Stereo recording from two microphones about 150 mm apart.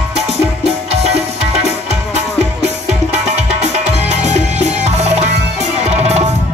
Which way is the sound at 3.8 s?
50° right (ahead or behind).